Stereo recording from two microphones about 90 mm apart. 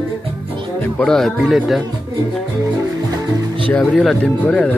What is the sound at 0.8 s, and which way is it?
Speech, 10° left (ahead or behind).